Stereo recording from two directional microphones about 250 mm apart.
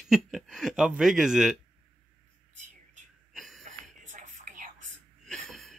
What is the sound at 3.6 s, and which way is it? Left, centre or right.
Whispering, right.